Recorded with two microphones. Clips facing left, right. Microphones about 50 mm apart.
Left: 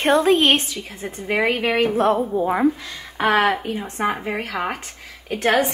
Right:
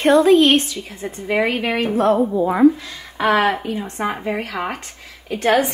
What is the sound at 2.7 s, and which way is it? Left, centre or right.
A woman's voice, centre.